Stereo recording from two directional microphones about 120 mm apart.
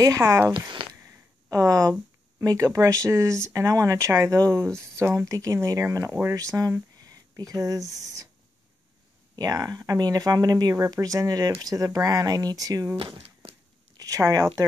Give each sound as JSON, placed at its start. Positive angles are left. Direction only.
{"t": 0.0, "sound": "speech", "side_deg": -25}
{"t": 0.5, "sound": "speech", "side_deg": -45}
{"t": 1.5, "sound": "speech", "side_deg": -30}
{"t": 9.4, "sound": "speech", "side_deg": -30}
{"t": 12.9, "sound": "speech", "side_deg": -50}
{"t": 13.9, "sound": "speech", "side_deg": -30}